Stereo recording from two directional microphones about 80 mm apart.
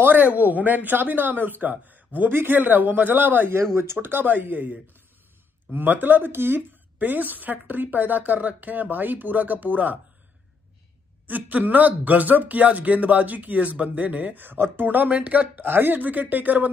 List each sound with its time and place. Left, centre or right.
0.0 s speech: right
11.2 s speech: right